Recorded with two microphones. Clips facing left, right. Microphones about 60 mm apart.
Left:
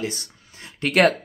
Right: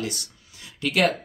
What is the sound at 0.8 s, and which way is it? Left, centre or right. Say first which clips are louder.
Speech: left 4 dB; left.